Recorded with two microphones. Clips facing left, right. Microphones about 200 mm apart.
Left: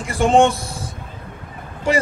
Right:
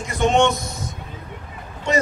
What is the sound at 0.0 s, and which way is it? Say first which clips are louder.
Speech: left 3 dB; 30° left (ahead or behind).